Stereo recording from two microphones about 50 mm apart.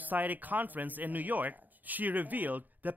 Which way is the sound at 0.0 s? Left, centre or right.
Right.